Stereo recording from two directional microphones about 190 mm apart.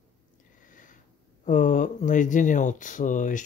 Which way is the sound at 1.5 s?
40° left (ahead or behind).